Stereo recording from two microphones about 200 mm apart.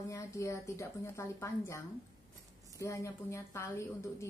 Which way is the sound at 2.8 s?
15° left (ahead or behind).